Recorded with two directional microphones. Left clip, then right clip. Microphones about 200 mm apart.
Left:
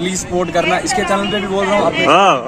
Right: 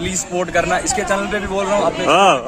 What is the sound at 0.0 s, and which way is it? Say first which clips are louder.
Speech: left 3 dB; 5° right (ahead or behind).